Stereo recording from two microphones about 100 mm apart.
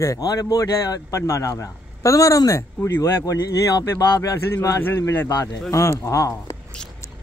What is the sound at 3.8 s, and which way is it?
Speech, 35° left (ahead or behind).